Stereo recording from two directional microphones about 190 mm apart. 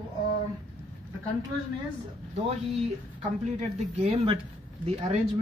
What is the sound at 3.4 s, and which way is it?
A woman's voice, 35° right (ahead or behind).